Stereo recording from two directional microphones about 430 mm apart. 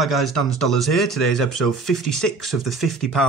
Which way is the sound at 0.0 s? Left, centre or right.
Centre.